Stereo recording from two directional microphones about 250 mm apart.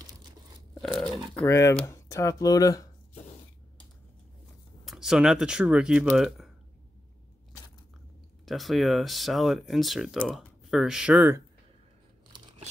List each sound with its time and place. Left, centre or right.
0.8 s speech: centre
4.8 s speech: centre
8.5 s speech: centre
12.3 s a sound: centre